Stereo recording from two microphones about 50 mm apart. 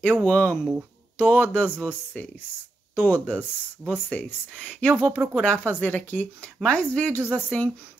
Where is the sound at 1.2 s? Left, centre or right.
Left.